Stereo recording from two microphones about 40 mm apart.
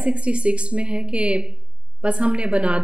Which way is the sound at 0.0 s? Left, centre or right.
Right.